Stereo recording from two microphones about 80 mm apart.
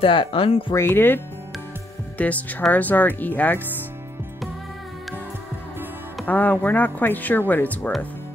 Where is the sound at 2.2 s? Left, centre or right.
Centre.